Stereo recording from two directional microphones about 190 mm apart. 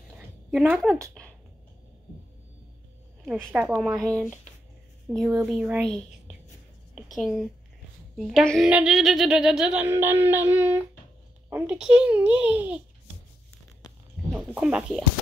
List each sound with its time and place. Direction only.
0.5 s speech: centre (ahead or behind)
1.2 s a sound: 5° left (ahead or behind)
3.3 s speech: 5° left (ahead or behind)
3.5 s a child's voice: 10° right (ahead or behind)
5.1 s speech: centre (ahead or behind)
7.0 s a woman's voice: centre (ahead or behind)
13.8 s a sound: 20° left (ahead or behind)
14.3 s speech: 5° right (ahead or behind)